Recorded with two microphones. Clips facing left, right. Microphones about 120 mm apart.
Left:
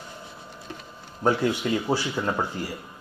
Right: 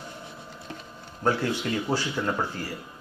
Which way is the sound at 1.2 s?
15° left (ahead or behind).